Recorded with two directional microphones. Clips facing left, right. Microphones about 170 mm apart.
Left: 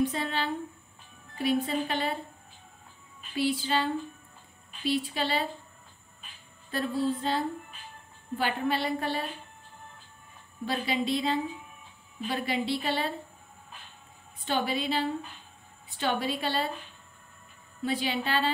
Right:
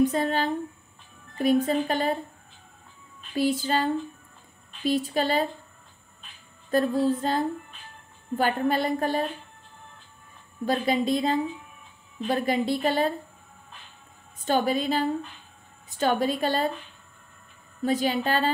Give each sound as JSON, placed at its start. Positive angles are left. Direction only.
{"t": 0.1, "sound": "a woman's voice", "side_deg": -45}
{"t": 3.3, "sound": "a woman's voice", "side_deg": -45}
{"t": 6.7, "sound": "a woman's voice", "side_deg": -45}
{"t": 10.6, "sound": "a woman's voice", "side_deg": -45}
{"t": 14.4, "sound": "a woman's voice", "side_deg": -45}
{"t": 17.8, "sound": "a woman's voice", "side_deg": -45}